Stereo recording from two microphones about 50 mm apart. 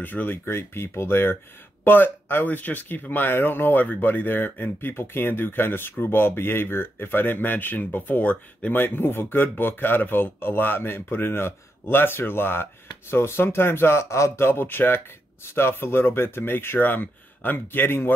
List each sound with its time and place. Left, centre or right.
0.0 s speech: left
0.5 s speech: left
8.8 s speech: left
14.1 s speech: left
14.4 s speech: left
15.4 s speech: left